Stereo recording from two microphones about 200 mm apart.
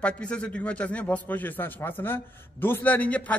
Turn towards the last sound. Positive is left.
turn(degrees=5)  # may be behind; listen again after turning